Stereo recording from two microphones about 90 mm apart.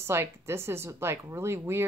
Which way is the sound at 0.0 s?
30° right (ahead or behind).